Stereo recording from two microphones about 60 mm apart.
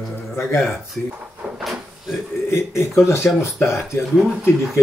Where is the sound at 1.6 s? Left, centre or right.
Centre.